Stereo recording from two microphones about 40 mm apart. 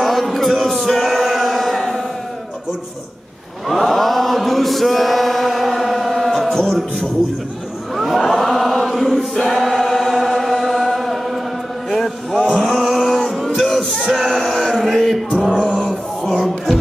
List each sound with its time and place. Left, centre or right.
0.0 s male singing: centre
1.3 s chant: centre
3.6 s chant: centre
7.9 s a sound: centre
8.2 s choir: centre
10.1 s chant: centre
11.9 s music: centre
12.4 s a sound: centre
12.7 s music: centre
14.3 s music: centre
14.8 s a sound: centre
15.7 s a sound: centre